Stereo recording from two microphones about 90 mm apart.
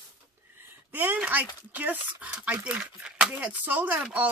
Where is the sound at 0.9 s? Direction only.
20° right (ahead or behind).